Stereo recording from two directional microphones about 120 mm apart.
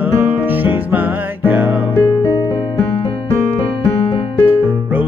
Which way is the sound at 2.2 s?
40° left (ahead or behind).